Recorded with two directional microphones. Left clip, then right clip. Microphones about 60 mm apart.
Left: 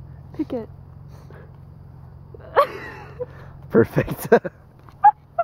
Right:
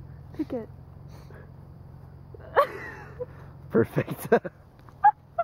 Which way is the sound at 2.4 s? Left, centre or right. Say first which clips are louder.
Left 5 dB; centre.